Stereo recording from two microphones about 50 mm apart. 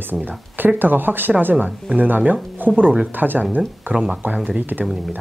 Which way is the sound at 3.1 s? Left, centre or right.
Right.